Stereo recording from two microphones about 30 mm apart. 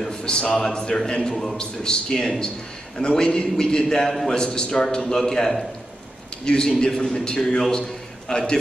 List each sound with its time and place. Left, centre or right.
0.1 s a man's voice: left; by 5.7 s centre
6.4 s a man's voice: left